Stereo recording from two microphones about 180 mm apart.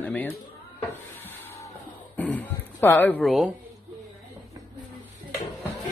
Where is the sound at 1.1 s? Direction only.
10° left (ahead or behind).